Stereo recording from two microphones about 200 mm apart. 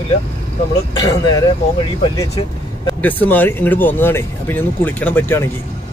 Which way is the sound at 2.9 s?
10° left (ahead or behind).